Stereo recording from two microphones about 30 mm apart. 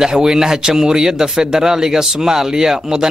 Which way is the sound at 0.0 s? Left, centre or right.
Centre.